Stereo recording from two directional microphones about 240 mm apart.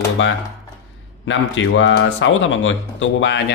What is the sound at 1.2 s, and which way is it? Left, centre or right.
A man's voice, left.